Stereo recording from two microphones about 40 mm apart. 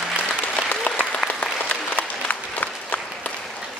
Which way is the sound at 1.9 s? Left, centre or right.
Left.